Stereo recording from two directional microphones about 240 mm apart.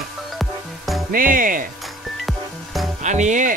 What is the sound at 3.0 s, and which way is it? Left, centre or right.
Speech, right.